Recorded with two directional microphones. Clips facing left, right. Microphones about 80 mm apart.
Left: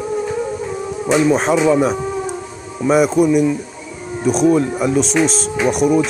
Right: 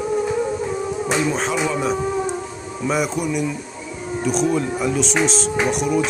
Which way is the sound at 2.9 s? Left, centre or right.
Left.